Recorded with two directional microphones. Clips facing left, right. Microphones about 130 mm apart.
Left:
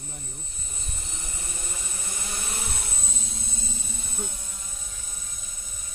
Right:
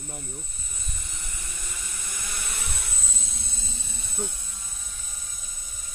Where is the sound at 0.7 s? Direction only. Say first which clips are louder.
Left 2 dB; 30° left (ahead or behind).